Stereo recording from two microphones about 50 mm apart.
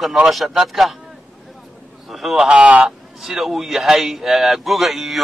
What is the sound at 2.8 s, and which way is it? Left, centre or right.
Speech, centre.